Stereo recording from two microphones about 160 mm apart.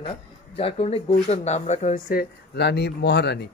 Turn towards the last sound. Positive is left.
turn(degrees=90)